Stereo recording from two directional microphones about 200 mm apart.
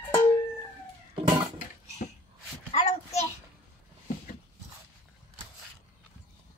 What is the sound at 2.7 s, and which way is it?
Child singing, 35° left (ahead or behind).